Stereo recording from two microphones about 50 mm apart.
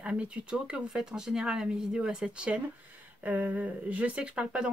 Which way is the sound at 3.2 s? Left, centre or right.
Right.